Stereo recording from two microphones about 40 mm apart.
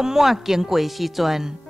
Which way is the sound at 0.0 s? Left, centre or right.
Centre.